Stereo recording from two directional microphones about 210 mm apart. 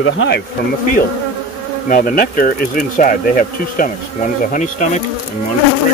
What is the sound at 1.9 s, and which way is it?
Speech, 40° left (ahead or behind).